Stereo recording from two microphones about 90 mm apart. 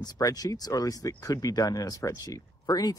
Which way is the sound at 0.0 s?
45° left (ahead or behind).